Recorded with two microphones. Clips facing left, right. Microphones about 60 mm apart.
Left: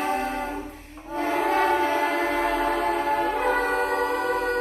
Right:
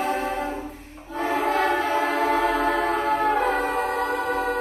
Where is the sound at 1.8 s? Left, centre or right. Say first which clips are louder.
Even; right.